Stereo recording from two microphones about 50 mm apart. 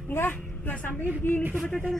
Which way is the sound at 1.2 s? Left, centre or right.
Left.